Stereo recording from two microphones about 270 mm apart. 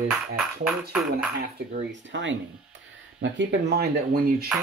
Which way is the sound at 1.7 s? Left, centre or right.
Right.